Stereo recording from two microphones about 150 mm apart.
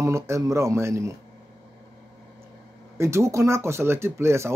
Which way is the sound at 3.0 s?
20° right (ahead or behind).